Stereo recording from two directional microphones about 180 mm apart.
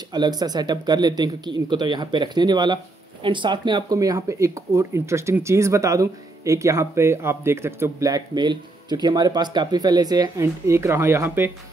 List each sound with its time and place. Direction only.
0.1 s speech: 20° right (ahead or behind)